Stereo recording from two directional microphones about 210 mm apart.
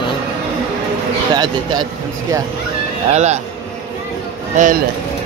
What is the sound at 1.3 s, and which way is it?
Speech, 20° right (ahead or behind).